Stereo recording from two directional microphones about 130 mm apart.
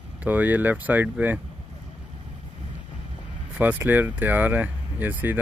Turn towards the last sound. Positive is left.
turn(degrees=-15)  # may be behind; listen again after turning